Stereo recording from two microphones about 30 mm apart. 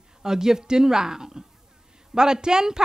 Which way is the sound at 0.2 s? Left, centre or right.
Centre.